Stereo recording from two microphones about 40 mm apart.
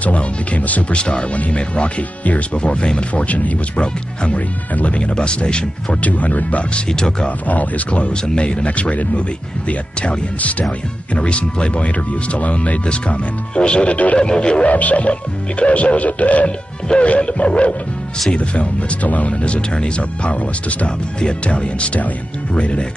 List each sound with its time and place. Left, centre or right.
0.0 s speech: left
0.9 s speech: left
3.8 s speech: left
6.0 s speech: left
6.9 s speech: centre
7.2 s speech: left
14.1 s speech: left
14.7 s speech: left